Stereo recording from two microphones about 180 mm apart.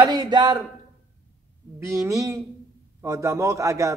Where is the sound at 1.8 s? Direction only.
15° right (ahead or behind).